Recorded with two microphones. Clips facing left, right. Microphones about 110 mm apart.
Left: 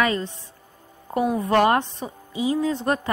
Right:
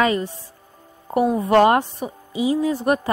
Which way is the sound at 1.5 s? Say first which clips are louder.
Right 4 dB; 25° right (ahead or behind).